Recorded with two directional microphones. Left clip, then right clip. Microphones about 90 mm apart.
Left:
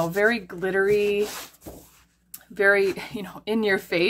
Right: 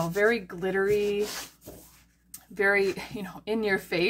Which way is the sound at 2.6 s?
35° left (ahead or behind).